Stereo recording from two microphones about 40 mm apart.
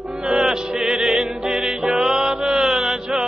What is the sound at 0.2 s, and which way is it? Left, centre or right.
Music, centre.